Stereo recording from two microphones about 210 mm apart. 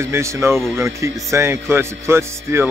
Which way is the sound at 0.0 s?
15° right (ahead or behind).